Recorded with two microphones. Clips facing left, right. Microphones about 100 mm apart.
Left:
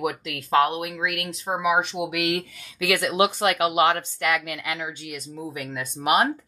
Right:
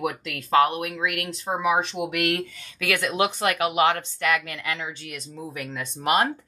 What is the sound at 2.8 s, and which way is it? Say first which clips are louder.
Speech: left 2 dB; 15° left (ahead or behind).